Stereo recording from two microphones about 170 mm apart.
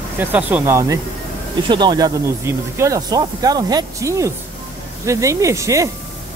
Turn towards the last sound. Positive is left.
turn(degrees=-20)  # may be behind; listen again after turning